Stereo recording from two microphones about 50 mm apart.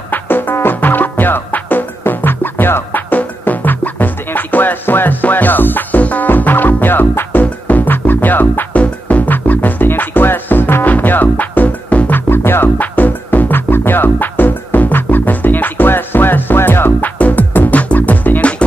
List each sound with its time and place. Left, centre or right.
0.1 s music: left
12.3 s music: left
12.7 s music: left
17.2 s music: left